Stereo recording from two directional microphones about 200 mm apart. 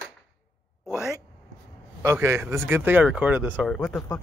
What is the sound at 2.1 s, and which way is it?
Speech, 10° right (ahead or behind).